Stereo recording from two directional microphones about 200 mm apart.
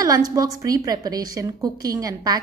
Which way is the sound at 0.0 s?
20° right (ahead or behind).